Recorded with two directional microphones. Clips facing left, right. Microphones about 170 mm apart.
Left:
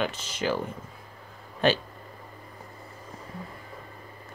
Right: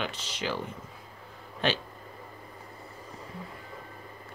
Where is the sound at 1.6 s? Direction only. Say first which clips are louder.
Left 6 dB; 45° left (ahead or behind).